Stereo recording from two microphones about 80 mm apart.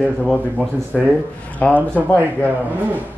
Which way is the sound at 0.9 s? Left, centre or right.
Centre.